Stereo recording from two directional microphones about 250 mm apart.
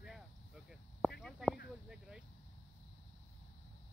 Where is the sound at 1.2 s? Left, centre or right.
Centre.